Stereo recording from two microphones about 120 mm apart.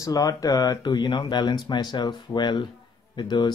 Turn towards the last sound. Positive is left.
turn(degrees=40)  # may be behind; listen again after turning